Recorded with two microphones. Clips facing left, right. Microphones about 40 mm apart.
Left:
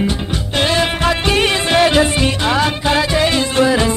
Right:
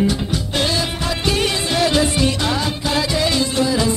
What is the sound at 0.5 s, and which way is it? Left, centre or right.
Music, left.